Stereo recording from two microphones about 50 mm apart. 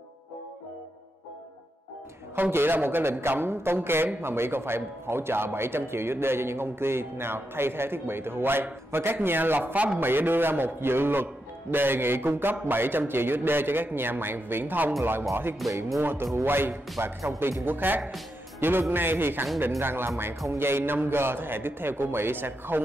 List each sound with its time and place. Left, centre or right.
2.3 s a man's voice: right
15.6 s speech: centre
16.0 s a man's voice: right
17.6 s a man's voice: right